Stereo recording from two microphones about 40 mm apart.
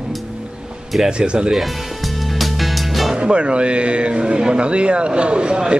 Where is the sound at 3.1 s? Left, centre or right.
Right.